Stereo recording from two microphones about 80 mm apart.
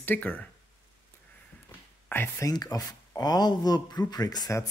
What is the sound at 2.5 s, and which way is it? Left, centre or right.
Speech, left.